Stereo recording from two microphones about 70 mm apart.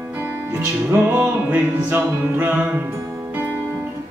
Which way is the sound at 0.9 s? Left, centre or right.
Right.